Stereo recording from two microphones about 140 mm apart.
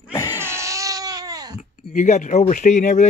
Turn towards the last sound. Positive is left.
turn(degrees=60)  # may be behind; listen again after turning